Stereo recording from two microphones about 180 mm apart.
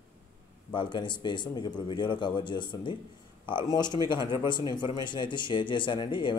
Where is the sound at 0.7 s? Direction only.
25° left (ahead or behind).